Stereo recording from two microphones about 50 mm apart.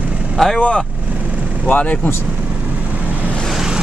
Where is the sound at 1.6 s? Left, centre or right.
Left.